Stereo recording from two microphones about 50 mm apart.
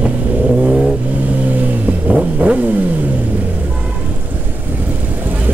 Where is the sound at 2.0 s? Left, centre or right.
Right.